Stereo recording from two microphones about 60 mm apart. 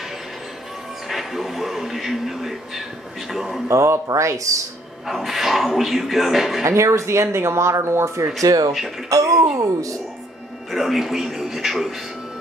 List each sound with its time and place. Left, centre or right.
1.0 s speech: centre
3.6 s speech: right
5.0 s speech: centre
6.6 s speech: right
8.4 s speech: right
9.1 s speech: right
10.7 s speech: centre